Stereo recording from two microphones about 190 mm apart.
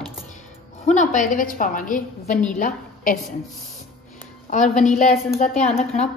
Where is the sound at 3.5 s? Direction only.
Centre (ahead or behind).